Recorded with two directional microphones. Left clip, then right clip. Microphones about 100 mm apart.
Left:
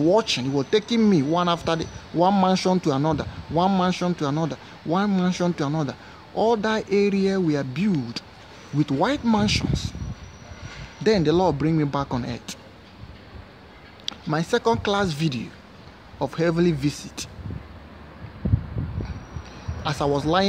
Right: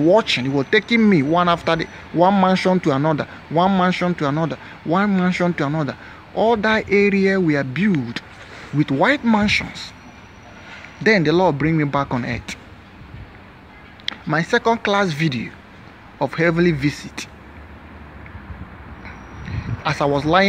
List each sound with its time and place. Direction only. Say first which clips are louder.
0.1 s a man's voice: right 5 dB; 15° left (ahead or behind)
11.1 s a man's voice: right 4 dB; 15° left (ahead or behind)
14.0 s a man's voice: right 5 dB; 20° left (ahead or behind)
19.8 s a man's voice: right 4 dB; 15° left (ahead or behind)